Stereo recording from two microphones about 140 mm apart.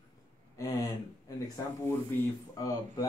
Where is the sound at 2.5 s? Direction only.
25° left (ahead or behind).